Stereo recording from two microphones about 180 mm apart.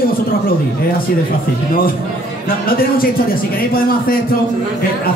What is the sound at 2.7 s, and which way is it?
Mantra, 55° left (ahead or behind).